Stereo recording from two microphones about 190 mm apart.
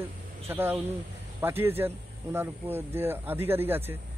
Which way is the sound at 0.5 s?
10° right (ahead or behind).